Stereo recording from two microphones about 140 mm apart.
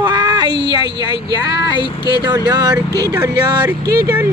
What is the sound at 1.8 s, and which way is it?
Speech, 30° left (ahead or behind).